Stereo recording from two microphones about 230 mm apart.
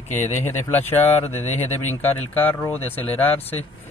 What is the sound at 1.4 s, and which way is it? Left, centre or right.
Speech, left.